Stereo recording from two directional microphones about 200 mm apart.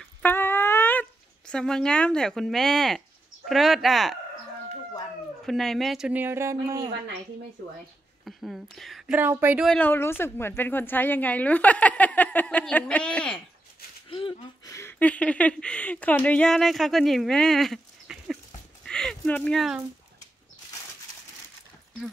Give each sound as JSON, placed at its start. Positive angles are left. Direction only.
{"t": 0.2, "sound": "dog", "side_deg": 10}
{"t": 1.5, "sound": "speech", "side_deg": 5}
{"t": 5.4, "sound": "speech", "side_deg": 0}
{"t": 8.3, "sound": "speech", "side_deg": 0}
{"t": 9.7, "sound": "a woman's voice", "side_deg": 10}
{"t": 14.1, "sound": "a sound", "side_deg": 25}
{"t": 14.8, "sound": "speech", "side_deg": 10}